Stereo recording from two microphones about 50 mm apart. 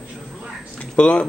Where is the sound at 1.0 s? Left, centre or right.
Left.